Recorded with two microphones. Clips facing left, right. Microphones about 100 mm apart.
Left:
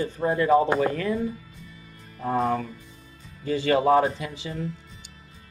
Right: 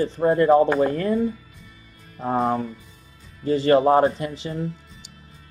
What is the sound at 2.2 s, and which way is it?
Speech, 35° right (ahead or behind).